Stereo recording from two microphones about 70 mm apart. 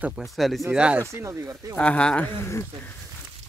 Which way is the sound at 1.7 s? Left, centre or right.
Centre.